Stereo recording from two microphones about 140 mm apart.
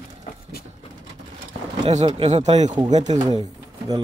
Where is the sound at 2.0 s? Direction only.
45° right (ahead or behind).